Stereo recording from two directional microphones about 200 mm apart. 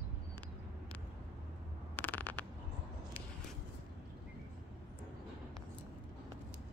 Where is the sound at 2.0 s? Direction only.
10° left (ahead or behind).